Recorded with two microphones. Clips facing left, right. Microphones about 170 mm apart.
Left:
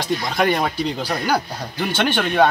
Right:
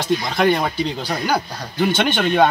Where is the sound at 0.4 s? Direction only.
Centre (ahead or behind).